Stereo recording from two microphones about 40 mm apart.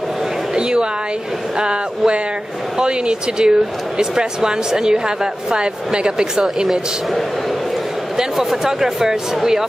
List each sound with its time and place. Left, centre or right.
0.6 s a woman's voice: right
8.2 s speech: centre